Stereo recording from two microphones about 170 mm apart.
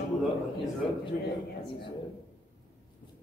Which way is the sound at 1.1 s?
50° left (ahead or behind).